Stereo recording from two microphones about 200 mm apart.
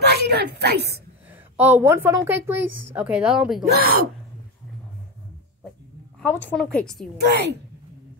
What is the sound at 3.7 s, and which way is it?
Speech, 50° right (ahead or behind).